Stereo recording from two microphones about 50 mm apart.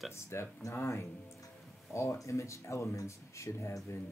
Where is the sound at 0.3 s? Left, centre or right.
Left.